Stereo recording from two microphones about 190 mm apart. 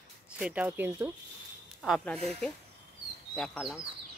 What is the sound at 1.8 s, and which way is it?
Speech, 5° left (ahead or behind).